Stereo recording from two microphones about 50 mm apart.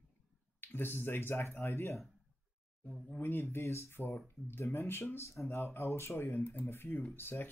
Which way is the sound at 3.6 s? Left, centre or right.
Left.